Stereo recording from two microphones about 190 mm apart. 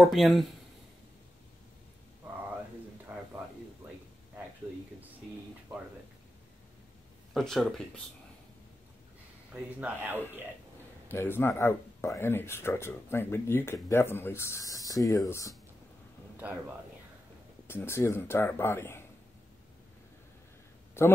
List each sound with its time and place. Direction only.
0.0 s speech: centre (ahead or behind)
3.1 s a sound: 10° right (ahead or behind)
7.3 s speech: centre (ahead or behind)
9.5 s speech: 5° right (ahead or behind)
11.1 s speech: 10° left (ahead or behind)
16.4 s speech: 10° right (ahead or behind)
17.6 s speech: 10° left (ahead or behind)
21.0 s a man's voice: 15° left (ahead or behind)